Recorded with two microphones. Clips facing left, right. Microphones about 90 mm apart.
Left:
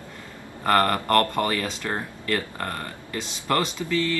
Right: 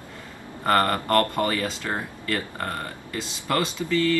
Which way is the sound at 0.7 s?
20° right (ahead or behind).